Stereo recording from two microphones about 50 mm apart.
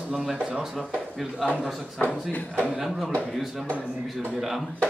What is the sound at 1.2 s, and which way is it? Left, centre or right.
Speech, centre.